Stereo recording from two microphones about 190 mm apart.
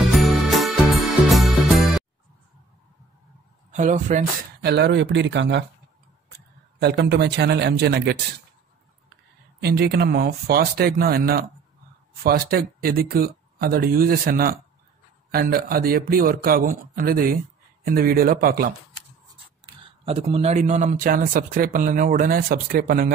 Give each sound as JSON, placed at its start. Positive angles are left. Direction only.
{"t": 0.2, "sound": "music", "side_deg": 0}
{"t": 3.7, "sound": "speech", "side_deg": -40}
{"t": 4.6, "sound": "speech", "side_deg": -60}
{"t": 6.8, "sound": "speech", "side_deg": -60}
{"t": 9.6, "sound": "speech", "side_deg": -55}
{"t": 19.6, "sound": "speech", "side_deg": -30}